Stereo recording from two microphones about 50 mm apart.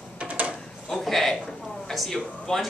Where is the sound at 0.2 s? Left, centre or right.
Right.